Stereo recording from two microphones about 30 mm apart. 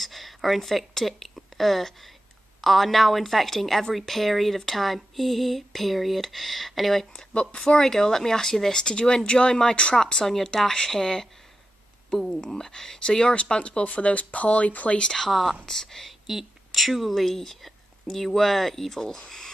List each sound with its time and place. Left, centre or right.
0.0 s speech: centre
7.3 s speech: left
7.8 s speech: centre
8.8 s speech: left
10.7 s speech: centre
12.3 s speech: centre
13.0 s speech: left
15.2 s speech: centre
15.6 s speech: centre
16.1 s speech: centre
18.9 s speech: centre